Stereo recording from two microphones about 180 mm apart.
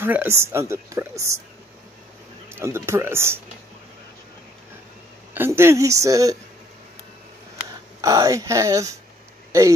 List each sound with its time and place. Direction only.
0.0 s a woman's voice: 10° right (ahead or behind)
2.5 s a woman's voice: 15° right (ahead or behind)
5.3 s a woman's voice: 15° right (ahead or behind)
8.0 s a woman's voice: 20° right (ahead or behind)